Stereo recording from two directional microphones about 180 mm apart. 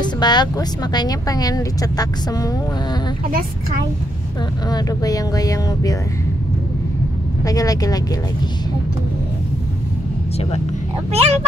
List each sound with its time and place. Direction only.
0.0 s speech: 25° left (ahead or behind)
4.6 s speech: 20° left (ahead or behind)
7.4 s speech: 20° left (ahead or behind)
11.1 s speech: 35° right (ahead or behind)